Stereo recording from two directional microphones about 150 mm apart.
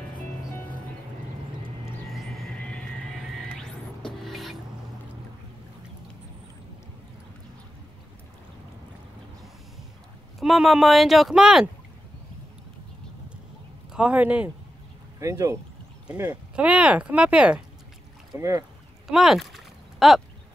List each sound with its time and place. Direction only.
2.1 s music: centre (ahead or behind)
10.4 s speech: centre (ahead or behind)
13.9 s speech: 10° right (ahead or behind)
15.1 s speech: 20° right (ahead or behind)
16.1 s speech: 10° right (ahead or behind)
18.4 s speech: 20° right (ahead or behind)
19.0 s a sound: 5° right (ahead or behind)